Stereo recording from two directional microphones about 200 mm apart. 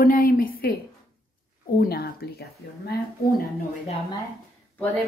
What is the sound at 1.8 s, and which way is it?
Speech, 50° left (ahead or behind).